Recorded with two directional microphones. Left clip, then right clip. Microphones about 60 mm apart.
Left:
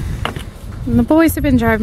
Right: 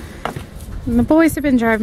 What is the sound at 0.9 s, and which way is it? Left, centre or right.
Speech, centre.